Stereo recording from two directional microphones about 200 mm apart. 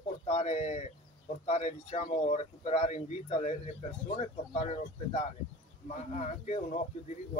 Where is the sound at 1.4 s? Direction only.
35° left (ahead or behind).